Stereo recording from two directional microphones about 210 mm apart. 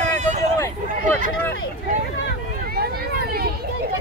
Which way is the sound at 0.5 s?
15° left (ahead or behind).